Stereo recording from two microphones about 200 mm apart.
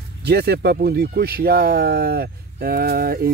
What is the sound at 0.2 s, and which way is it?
Speech, 55° right (ahead or behind).